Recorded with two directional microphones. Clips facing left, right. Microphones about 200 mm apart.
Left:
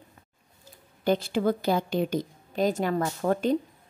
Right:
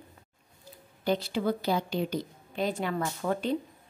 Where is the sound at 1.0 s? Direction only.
50° left (ahead or behind).